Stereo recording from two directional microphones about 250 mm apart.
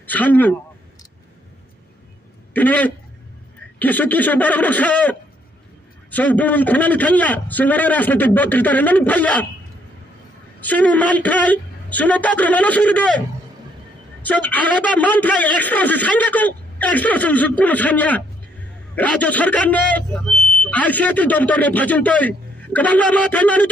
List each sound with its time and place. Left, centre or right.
0.0 s speech: centre
2.5 s a man's voice: centre
10.6 s a man's voice: centre
14.2 s a man's voice: centre